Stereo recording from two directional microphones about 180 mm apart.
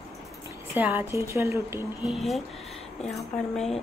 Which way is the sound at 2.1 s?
Centre (ahead or behind).